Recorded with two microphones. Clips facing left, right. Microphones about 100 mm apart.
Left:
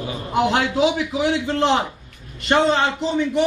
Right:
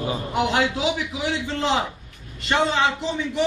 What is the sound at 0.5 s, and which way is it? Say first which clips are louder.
A man's voice: left 4 dB; 45° left (ahead or behind).